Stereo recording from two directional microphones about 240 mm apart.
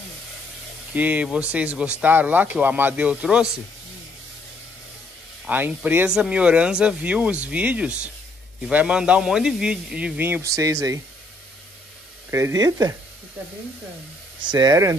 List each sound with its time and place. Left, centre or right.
0.9 s speech: centre
5.5 s speech: centre
12.3 s speech: centre
14.4 s speech: centre